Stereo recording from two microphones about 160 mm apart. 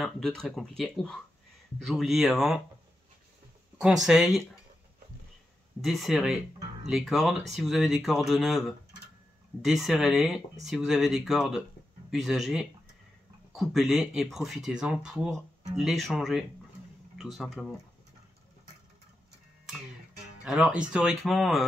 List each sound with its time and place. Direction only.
0.0 s speech: 5° left (ahead or behind)
3.8 s speech: 5° right (ahead or behind)
5.8 s speech: centre (ahead or behind)
20.4 s speech: 5° right (ahead or behind)